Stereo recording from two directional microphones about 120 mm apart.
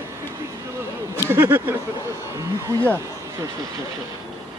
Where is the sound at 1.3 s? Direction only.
15° right (ahead or behind).